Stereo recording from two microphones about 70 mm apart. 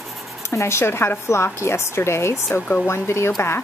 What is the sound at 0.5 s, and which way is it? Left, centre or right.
Speech, left.